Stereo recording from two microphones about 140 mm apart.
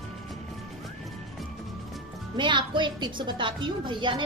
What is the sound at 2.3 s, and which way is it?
A woman's voice, 35° right (ahead or behind).